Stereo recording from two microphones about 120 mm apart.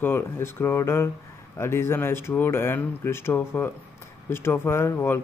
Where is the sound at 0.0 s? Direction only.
20° left (ahead or behind).